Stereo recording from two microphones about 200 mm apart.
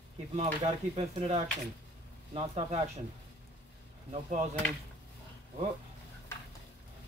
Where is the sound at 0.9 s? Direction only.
30° right (ahead or behind).